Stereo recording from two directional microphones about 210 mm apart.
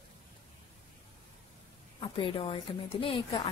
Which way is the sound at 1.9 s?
25° left (ahead or behind).